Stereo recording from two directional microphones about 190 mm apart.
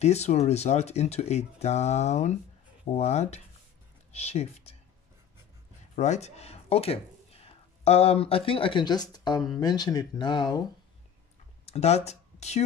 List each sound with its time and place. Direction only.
0.0 s speech: 35° left (ahead or behind)
5.9 s speech: 35° left (ahead or behind)
11.6 s speech: 35° left (ahead or behind)